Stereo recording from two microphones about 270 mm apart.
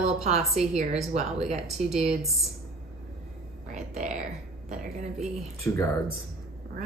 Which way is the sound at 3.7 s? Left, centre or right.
Right.